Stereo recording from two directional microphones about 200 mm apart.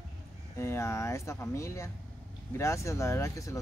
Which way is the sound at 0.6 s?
15° left (ahead or behind).